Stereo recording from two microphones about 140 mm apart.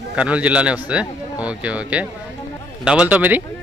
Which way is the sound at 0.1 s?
10° right (ahead or behind).